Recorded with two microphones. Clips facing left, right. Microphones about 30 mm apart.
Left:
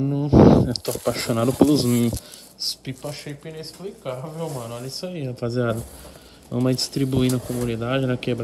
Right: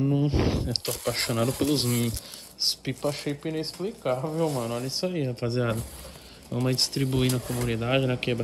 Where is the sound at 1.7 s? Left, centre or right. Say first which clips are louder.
Left 7 dB; right.